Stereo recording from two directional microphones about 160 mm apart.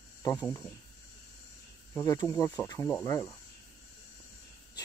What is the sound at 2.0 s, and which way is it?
Speech, 20° left (ahead or behind).